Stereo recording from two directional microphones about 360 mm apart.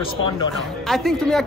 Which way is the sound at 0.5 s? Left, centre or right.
Centre.